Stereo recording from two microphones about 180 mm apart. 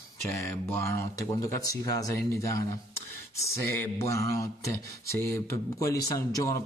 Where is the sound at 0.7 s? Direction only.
15° left (ahead or behind).